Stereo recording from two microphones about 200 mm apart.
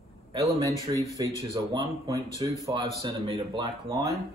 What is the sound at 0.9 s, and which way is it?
Speech, 25° right (ahead or behind).